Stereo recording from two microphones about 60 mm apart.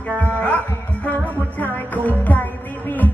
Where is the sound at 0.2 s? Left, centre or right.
Left.